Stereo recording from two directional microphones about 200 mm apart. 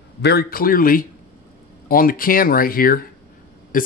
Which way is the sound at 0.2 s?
50° left (ahead or behind).